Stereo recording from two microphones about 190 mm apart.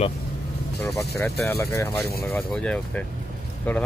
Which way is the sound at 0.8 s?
15° left (ahead or behind).